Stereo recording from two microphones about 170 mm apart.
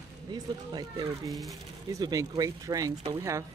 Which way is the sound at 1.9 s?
20° right (ahead or behind).